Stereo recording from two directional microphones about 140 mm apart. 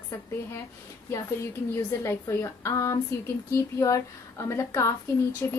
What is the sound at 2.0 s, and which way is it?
Speech, 20° left (ahead or behind).